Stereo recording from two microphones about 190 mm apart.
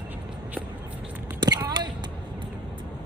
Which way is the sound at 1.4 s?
20° right (ahead or behind).